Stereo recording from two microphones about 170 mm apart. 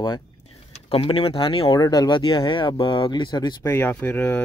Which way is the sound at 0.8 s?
35° left (ahead or behind).